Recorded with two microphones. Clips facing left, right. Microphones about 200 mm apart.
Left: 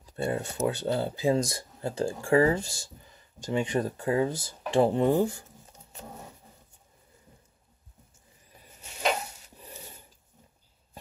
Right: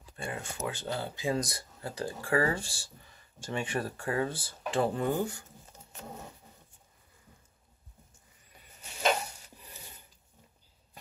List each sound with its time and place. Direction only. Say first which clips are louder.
0.0 s speech: left 9 dB; 40° left (ahead or behind); by 4.3 s 20° left (ahead or behind)
4.3 s speech: left 5 dB; 40° left (ahead or behind)
4.7 s speech: left 7 dB; 25° left (ahead or behind)